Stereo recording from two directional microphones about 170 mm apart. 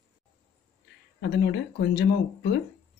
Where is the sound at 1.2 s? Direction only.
90° left.